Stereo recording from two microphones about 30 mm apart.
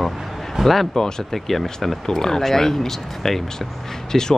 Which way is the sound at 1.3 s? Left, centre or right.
Centre.